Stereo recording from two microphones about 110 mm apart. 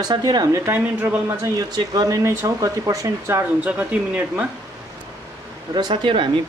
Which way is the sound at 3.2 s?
15° right (ahead or behind).